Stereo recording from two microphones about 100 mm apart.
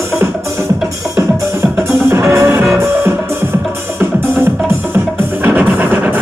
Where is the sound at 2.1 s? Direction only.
25° right (ahead or behind).